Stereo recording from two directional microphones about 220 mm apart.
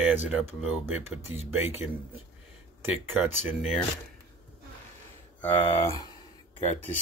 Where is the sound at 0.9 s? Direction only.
10° right (ahead or behind).